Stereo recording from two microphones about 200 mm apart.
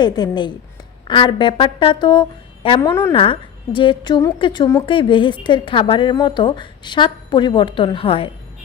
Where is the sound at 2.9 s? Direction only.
15° left (ahead or behind).